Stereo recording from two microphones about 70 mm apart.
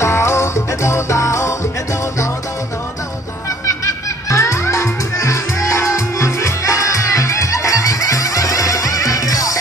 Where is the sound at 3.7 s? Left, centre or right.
Left.